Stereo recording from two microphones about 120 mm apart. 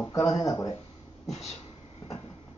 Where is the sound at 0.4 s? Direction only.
30° left (ahead or behind).